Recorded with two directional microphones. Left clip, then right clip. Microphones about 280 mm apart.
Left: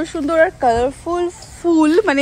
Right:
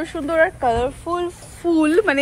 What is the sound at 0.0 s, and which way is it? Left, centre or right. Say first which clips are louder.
Speech: left 3 dB; centre.